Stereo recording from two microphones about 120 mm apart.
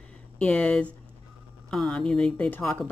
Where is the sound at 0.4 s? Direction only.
10° left (ahead or behind).